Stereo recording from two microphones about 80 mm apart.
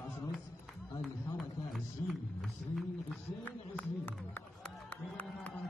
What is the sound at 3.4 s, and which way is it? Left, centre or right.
Speech, left.